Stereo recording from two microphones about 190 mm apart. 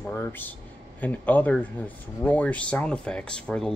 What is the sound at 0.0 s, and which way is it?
Speech, 10° left (ahead or behind).